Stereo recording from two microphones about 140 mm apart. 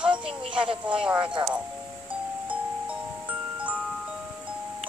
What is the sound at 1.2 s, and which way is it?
Speech, 35° right (ahead or behind).